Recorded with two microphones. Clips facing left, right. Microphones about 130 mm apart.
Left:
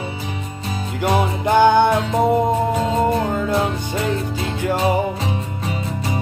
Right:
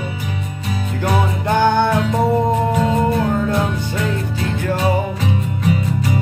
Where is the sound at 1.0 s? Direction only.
25° left (ahead or behind).